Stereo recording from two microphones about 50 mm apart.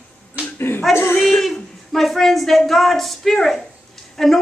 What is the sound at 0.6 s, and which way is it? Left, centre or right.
Speech, left.